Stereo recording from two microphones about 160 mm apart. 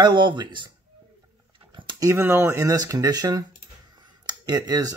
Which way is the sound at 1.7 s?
30° right (ahead or behind).